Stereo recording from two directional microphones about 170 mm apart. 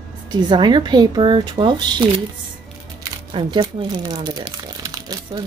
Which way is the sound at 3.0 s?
25° right (ahead or behind).